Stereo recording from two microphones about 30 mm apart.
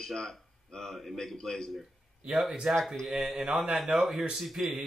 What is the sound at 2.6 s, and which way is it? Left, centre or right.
Speech, right.